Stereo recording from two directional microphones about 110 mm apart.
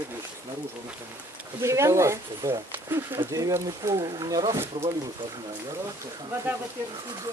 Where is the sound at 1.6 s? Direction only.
25° right (ahead or behind).